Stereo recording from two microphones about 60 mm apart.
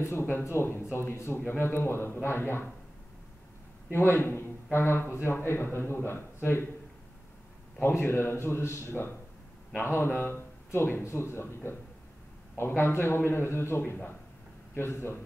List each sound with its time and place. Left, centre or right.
0.0 s speech: left
3.9 s speech: left
8.0 s speech: left